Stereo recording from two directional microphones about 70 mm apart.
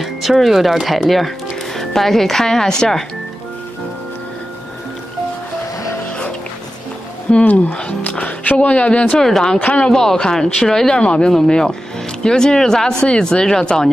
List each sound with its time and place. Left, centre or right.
0.0 s speech: centre
7.2 s speech: centre
9.2 s speech: centre
9.6 s speech: left
9.8 s speech: centre